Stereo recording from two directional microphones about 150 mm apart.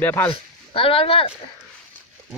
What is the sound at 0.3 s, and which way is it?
Speech, 40° left (ahead or behind).